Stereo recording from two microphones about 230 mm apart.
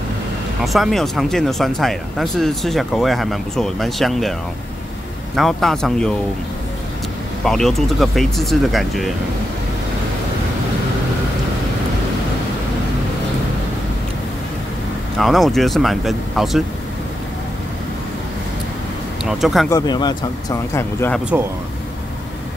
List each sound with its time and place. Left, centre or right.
0.7 s speech: centre
5.3 s speech: centre
7.4 s speech: centre
15.1 s speech: centre
19.2 s speech: centre
19.7 s speech: centre